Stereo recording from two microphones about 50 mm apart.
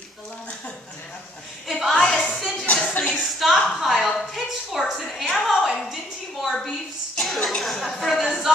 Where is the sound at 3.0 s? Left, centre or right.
Left.